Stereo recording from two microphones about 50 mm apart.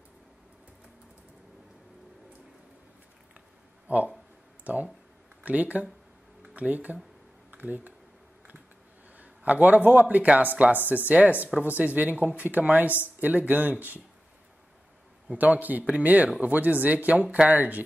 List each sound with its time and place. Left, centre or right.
3.8 s speech: right
9.1 s a sound: right
9.8 s speech: right
15.3 s speech: right